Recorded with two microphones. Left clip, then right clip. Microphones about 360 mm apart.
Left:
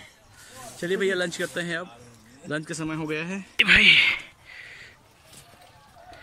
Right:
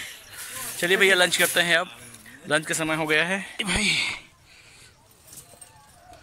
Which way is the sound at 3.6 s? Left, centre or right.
Centre.